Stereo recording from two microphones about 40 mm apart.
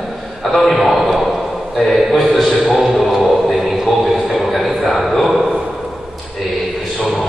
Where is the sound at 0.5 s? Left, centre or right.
Centre.